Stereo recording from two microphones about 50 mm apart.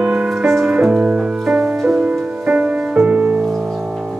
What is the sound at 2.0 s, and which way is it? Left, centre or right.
Music, right.